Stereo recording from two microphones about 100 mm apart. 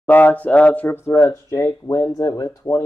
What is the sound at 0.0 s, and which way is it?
Speech, 15° left (ahead or behind).